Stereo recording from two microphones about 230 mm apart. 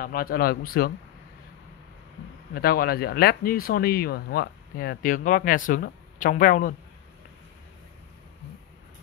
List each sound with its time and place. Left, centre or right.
0.0 s speech: left
2.5 s speech: left